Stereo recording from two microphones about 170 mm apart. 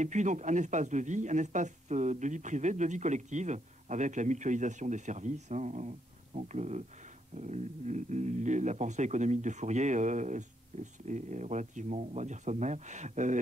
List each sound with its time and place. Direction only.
0.0 s speech: 45° right (ahead or behind)